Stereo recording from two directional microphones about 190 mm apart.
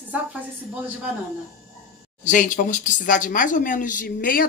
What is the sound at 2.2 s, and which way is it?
Speech, 45° left (ahead or behind).